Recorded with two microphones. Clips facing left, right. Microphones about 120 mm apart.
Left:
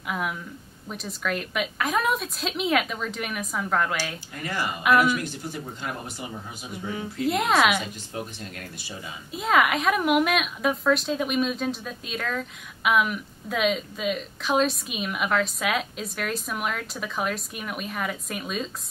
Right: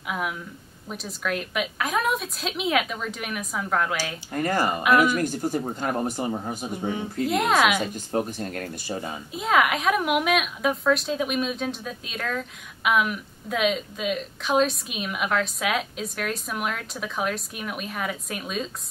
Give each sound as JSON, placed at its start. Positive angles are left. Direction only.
{"t": 0.1, "sound": "a woman's voice", "side_deg": 0}
{"t": 4.3, "sound": "speech", "side_deg": -45}
{"t": 7.2, "sound": "a woman's voice", "side_deg": 0}
{"t": 7.8, "sound": "speech", "side_deg": -45}
{"t": 9.3, "sound": "a woman's voice", "side_deg": 0}